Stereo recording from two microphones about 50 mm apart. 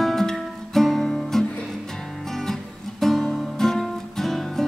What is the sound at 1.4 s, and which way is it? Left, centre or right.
Music, centre.